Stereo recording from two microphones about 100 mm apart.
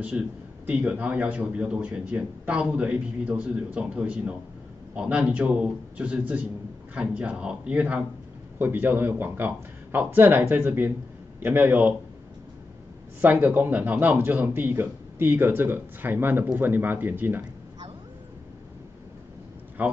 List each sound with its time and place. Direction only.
0.1 s a man's voice: 15° right (ahead or behind)
13.2 s a man's voice: 15° right (ahead or behind)
19.8 s a man's voice: 15° right (ahead or behind)